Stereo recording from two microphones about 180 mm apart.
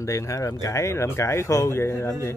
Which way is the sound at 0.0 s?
15° left (ahead or behind).